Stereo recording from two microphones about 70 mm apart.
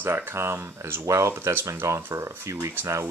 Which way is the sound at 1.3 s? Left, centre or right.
Right.